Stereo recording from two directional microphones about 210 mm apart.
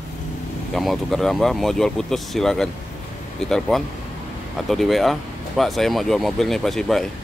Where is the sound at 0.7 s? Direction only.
Centre (ahead or behind).